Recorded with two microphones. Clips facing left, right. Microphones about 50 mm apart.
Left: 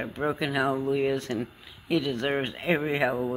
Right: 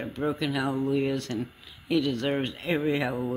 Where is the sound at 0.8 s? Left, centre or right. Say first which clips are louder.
Left 1 dB; centre.